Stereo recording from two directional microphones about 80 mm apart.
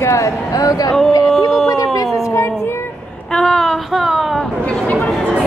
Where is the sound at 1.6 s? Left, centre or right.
Left.